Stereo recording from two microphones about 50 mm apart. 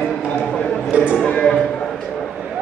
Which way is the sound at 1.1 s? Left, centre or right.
Left.